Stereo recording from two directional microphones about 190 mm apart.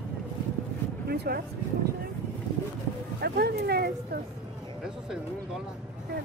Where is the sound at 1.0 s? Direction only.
55° right (ahead or behind).